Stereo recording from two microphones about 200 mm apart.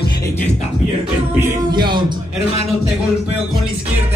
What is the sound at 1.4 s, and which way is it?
Music, 20° right (ahead or behind).